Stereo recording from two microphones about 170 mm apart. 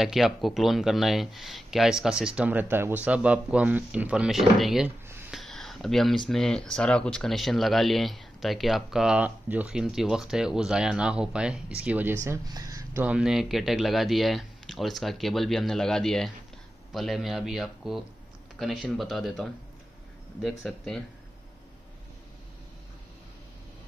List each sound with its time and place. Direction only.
0.0 s speech: centre (ahead or behind)
12.3 s speech: 20° right (ahead or behind)
13.0 s speech: 5° right (ahead or behind)